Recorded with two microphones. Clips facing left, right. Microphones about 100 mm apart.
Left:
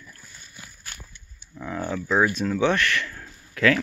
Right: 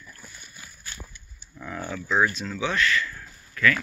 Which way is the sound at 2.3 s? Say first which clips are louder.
Left 6 dB; 50° left (ahead or behind).